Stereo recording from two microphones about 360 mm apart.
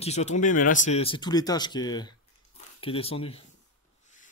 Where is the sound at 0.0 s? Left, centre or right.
Centre.